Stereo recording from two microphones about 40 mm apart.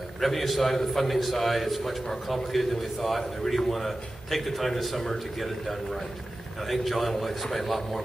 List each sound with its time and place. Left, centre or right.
0.2 s a man's voice: centre